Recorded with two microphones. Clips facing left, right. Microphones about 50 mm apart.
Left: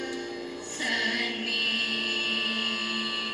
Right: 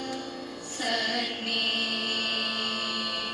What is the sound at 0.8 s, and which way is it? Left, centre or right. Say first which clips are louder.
Music: left 1 dB; left.